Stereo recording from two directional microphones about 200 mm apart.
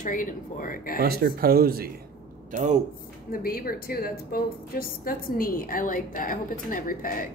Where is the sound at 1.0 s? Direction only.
50° right (ahead or behind).